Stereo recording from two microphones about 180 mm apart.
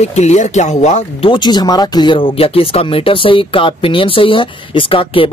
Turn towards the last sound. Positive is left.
turn(degrees=30)  # may be behind; listen again after turning